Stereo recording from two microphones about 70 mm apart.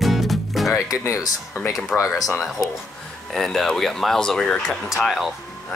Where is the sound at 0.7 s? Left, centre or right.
Left.